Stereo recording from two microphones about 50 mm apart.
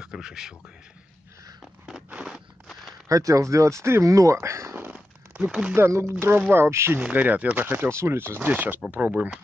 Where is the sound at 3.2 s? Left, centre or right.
Right.